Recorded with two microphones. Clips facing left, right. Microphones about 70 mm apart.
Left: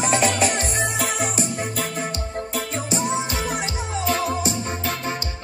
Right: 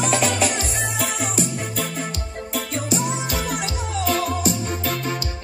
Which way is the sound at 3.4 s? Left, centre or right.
Left.